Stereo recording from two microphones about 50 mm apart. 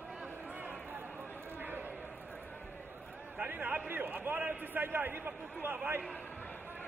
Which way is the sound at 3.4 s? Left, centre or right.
Right.